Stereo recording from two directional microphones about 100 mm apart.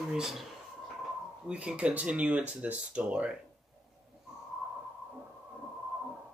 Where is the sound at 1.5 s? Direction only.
10° right (ahead or behind).